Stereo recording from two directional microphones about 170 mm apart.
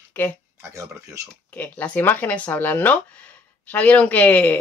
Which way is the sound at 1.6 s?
10° left (ahead or behind).